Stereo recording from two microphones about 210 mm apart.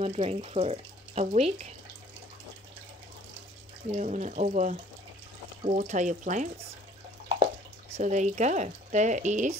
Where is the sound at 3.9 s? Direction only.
35° right (ahead or behind).